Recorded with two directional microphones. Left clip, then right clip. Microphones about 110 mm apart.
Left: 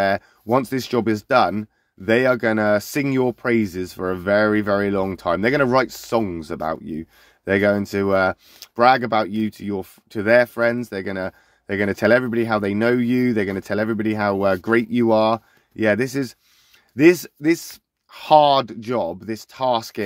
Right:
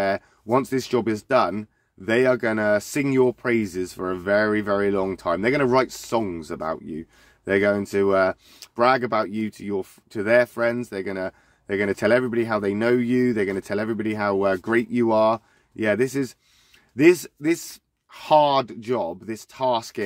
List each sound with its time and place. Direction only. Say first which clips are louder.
0.0 s speech: left 4 dB; 45° left (ahead or behind)